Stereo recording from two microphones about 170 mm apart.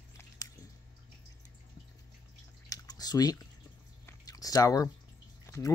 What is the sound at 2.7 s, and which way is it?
Drip, 20° left (ahead or behind).